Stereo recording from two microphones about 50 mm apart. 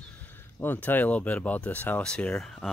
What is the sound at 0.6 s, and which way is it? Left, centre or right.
Speech, left.